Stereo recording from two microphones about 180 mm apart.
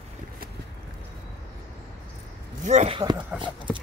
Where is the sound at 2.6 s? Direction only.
35° right (ahead or behind).